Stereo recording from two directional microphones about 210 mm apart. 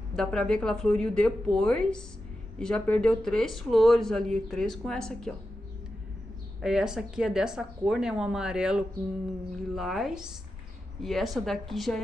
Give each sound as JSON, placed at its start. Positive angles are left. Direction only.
{"t": 0.1, "sound": "speech", "side_deg": 5}
{"t": 6.6, "sound": "speech", "side_deg": 0}